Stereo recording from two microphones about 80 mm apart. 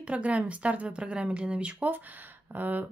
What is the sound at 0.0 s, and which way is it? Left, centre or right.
A woman's voice, centre.